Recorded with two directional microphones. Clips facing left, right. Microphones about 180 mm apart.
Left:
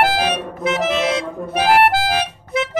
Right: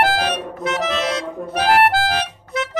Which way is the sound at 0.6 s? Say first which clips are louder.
Left 3 dB; 15° left (ahead or behind).